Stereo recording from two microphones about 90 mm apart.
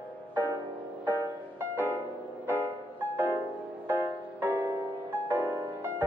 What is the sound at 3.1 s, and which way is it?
Music, 25° right (ahead or behind).